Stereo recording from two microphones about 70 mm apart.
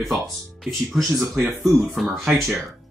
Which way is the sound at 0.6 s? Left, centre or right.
Centre.